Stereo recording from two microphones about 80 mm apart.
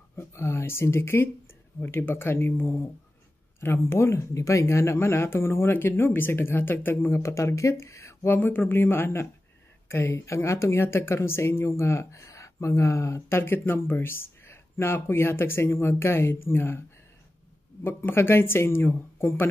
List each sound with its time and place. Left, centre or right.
0.1 s speech: left
7.2 s speech: left
8.4 s speech: left
17.8 s speech: left